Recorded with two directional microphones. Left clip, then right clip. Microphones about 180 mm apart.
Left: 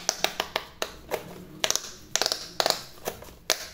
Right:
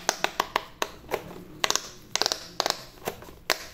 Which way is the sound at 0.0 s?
15° right (ahead or behind).